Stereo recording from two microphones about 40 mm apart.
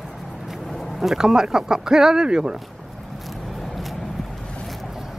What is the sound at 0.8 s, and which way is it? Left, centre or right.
Speech, centre.